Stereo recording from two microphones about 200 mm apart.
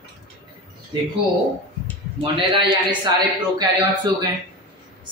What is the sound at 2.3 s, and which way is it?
Speech, 25° right (ahead or behind).